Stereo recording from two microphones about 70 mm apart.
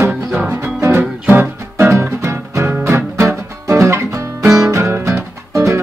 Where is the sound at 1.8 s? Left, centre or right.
Right.